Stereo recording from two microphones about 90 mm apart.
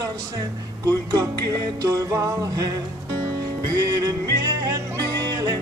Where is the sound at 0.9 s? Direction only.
45° right (ahead or behind).